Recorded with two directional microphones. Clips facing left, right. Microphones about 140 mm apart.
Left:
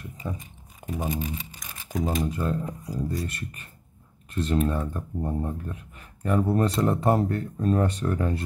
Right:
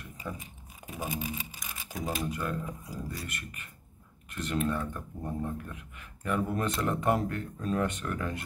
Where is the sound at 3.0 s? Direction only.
40° left (ahead or behind).